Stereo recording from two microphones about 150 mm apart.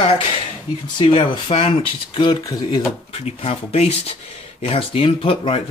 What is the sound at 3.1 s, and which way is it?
Speech, 45° left (ahead or behind).